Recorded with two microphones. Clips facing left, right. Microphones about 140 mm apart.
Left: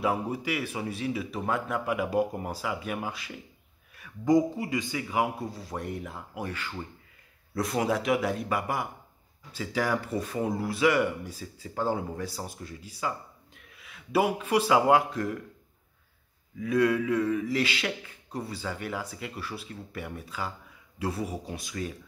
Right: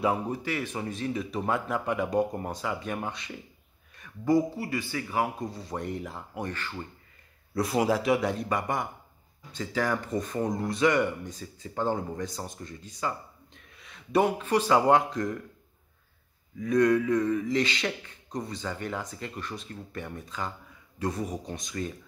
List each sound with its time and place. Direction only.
0.0 s a man's voice: centre (ahead or behind)
5.5 s speech: centre (ahead or behind)
7.5 s a man's voice: centre (ahead or behind)
16.5 s a man's voice: 5° left (ahead or behind)